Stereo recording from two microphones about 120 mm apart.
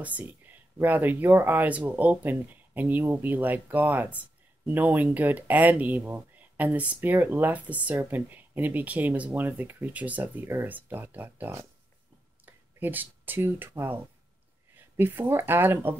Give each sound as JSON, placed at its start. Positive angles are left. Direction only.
{"t": 0.0, "sound": "speech", "side_deg": -15}